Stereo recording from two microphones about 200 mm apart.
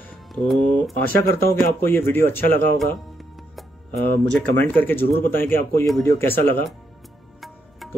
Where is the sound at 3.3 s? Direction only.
Centre (ahead or behind).